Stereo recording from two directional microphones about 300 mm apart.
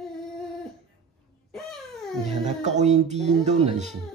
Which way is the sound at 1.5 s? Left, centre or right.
Centre.